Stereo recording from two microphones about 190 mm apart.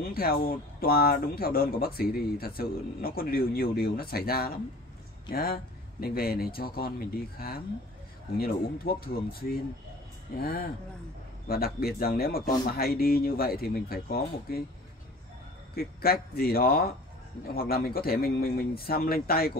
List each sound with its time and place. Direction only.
0.1 s speech: 50° left (ahead or behind)
15.7 s speech: 50° left (ahead or behind)